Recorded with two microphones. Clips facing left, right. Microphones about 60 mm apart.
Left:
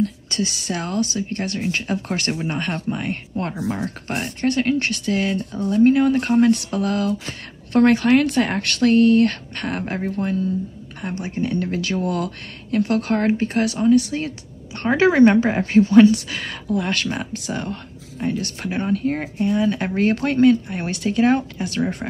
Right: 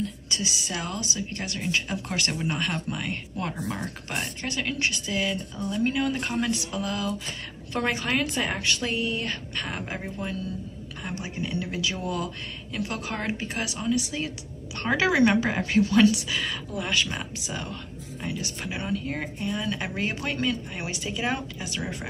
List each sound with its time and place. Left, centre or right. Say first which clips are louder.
0.0 s a woman's voice: left 8 dB; left
3.6 s a woman's voice: left 7 dB; left
16.2 s speech: even; left